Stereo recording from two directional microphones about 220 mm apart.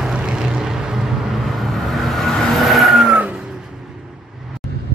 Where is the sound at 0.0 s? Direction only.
5° right (ahead or behind).